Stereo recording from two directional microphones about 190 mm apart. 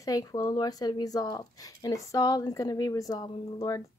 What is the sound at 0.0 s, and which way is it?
Speech, 20° left (ahead or behind).